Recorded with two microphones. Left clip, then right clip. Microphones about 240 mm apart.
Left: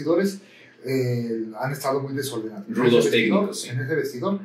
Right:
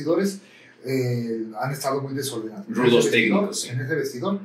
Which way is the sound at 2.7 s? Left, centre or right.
Centre.